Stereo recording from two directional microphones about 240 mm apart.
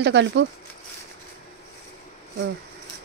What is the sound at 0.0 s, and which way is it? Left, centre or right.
Speech, right.